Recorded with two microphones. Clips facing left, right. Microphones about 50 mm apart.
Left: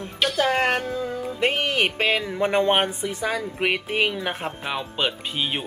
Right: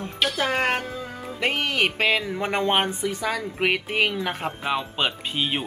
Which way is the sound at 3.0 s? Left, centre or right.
Centre.